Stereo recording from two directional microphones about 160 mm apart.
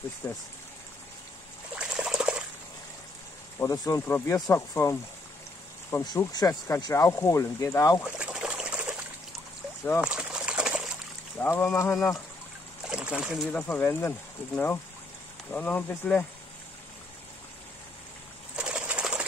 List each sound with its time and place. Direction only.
0.2 s speech: 15° left (ahead or behind)
1.8 s trickle: 5° right (ahead or behind)
3.5 s speech: 20° left (ahead or behind)
8.2 s trickle: 5° right (ahead or behind)
10.0 s a sound: 5° right (ahead or behind)
11.3 s speech: 15° left (ahead or behind)
12.8 s splash: 5° right (ahead or behind)
13.5 s speech: 10° left (ahead or behind)
18.6 s bird: 5° right (ahead or behind)